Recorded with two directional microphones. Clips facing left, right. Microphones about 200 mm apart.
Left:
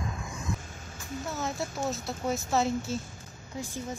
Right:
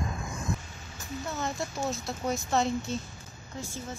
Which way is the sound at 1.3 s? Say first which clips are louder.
Even; 5° left (ahead or behind).